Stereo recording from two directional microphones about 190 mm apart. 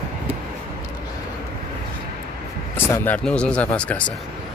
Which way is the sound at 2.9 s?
5° left (ahead or behind).